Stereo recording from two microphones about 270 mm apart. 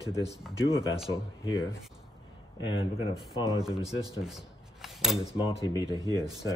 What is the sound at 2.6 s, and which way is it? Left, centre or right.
Speech, left.